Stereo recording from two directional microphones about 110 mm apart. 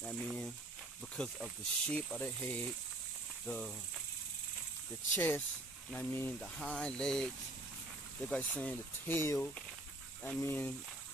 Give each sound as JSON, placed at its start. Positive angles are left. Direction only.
{"t": 0.0, "sound": "speech", "side_deg": 0}
{"t": 5.1, "sound": "speech", "side_deg": 20}